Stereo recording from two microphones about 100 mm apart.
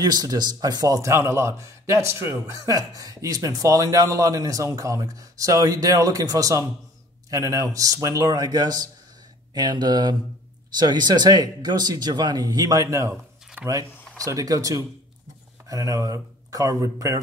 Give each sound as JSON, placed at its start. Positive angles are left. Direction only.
{"t": 0.0, "sound": "speech", "side_deg": -40}
{"t": 13.6, "sound": "speech", "side_deg": -15}
{"t": 14.1, "sound": "speech", "side_deg": -35}